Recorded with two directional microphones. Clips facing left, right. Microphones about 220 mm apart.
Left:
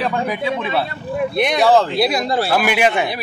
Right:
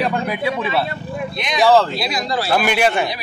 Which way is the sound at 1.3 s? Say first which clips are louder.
Even; 60° left (ahead or behind).